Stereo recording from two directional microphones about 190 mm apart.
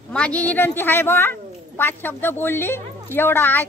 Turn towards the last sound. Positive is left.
turn(degrees=10)  # may be behind; listen again after turning